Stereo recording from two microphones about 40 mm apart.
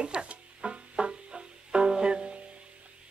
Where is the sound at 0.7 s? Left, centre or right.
Right.